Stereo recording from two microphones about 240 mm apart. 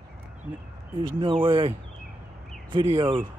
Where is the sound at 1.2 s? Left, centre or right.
Right.